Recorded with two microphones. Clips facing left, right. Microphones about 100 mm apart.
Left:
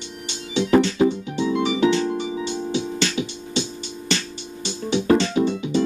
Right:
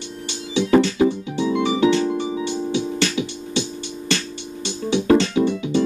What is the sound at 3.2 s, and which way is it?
Music, 20° right (ahead or behind).